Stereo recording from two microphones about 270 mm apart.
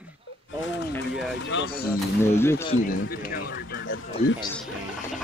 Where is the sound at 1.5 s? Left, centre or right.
Left.